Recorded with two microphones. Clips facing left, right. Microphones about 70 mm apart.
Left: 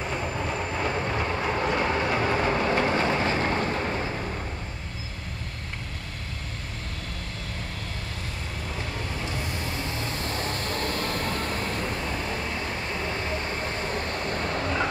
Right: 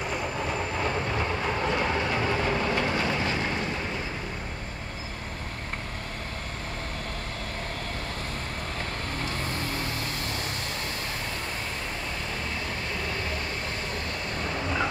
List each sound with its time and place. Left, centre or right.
0.0 s train: centre
0.3 s train: centre
2.7 s vehicle: left
10.2 s vehicle: left
12.9 s vehicle: left
13.7 s vehicle: left